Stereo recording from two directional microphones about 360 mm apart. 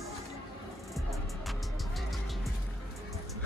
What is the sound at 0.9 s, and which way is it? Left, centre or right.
Music, centre.